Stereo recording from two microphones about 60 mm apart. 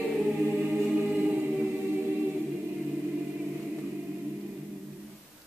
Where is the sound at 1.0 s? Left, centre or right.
Right.